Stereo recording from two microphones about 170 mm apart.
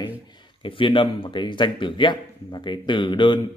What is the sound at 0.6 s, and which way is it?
Speech, 30° left (ahead or behind).